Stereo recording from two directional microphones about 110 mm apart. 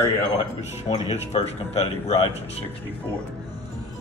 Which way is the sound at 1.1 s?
75° left (ahead or behind).